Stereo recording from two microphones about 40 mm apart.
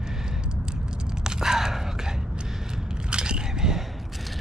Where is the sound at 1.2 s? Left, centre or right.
Centre.